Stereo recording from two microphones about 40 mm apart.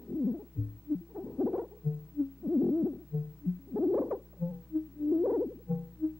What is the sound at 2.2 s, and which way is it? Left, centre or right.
Hoot, centre.